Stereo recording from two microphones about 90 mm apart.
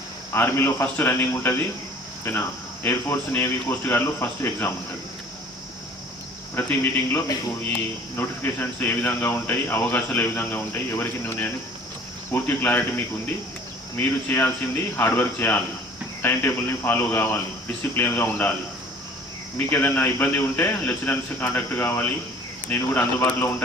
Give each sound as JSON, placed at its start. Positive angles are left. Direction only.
{"t": 0.3, "sound": "speech", "side_deg": 25}
{"t": 6.5, "sound": "speech", "side_deg": 25}
{"t": 19.7, "sound": "speech", "side_deg": 20}